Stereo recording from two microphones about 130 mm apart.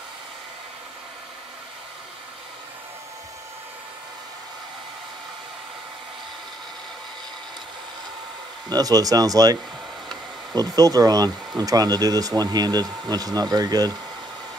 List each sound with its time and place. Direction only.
8.6 s speech: 30° right (ahead or behind)